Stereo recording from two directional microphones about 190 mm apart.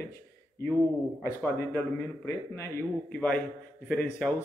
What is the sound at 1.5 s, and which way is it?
A man's voice, 15° left (ahead or behind).